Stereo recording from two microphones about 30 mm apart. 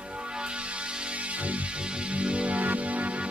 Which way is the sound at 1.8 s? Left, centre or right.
Right.